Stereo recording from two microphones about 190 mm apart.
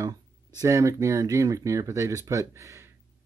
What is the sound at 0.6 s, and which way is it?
Speech, 15° right (ahead or behind).